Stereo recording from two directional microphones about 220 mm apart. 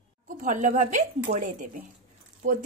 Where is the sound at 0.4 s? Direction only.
35° right (ahead or behind).